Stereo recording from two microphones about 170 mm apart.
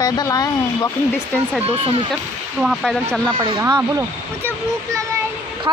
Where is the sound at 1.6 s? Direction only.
35° right (ahead or behind).